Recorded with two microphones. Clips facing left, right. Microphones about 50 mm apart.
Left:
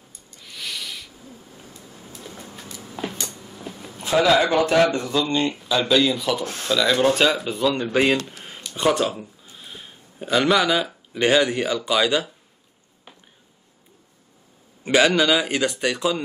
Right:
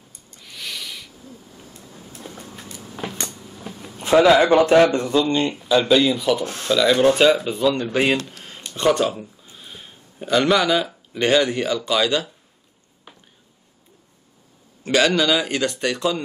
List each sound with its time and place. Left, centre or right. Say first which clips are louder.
0.4 s owl: even; centre
1.9 s vehicle: right 1 dB; centre
3.3 s vehicle: even; centre
3.7 s a sound: right 1 dB; centre
4.0 s a sound: right 5 dB; right
4.3 s speech: right 3 dB; centre
8.3 s a sound: even; centre
10.3 s speech: right 1 dB; centre
14.8 s speech: left 1 dB; centre